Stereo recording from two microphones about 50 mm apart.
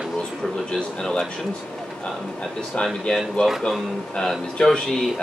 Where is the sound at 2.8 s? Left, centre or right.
Centre.